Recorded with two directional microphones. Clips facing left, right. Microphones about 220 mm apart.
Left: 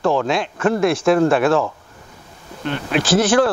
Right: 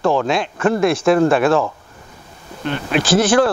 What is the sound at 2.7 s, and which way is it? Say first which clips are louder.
Speech: right 1 dB; 15° right (ahead or behind).